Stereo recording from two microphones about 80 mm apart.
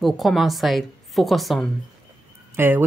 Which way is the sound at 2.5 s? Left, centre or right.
Right.